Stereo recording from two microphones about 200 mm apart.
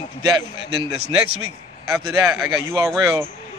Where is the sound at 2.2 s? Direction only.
10° right (ahead or behind).